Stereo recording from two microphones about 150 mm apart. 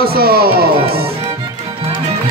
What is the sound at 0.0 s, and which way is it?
Speech, 90° right.